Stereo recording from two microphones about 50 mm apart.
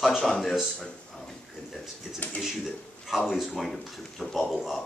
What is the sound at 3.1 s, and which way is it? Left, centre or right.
Speech, centre.